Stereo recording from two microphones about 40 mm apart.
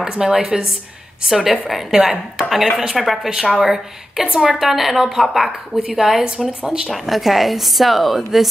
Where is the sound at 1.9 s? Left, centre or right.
Centre.